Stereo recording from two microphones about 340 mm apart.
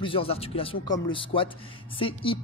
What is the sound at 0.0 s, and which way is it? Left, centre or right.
Speech, centre.